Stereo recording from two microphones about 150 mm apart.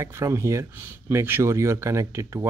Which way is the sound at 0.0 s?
20° right (ahead or behind).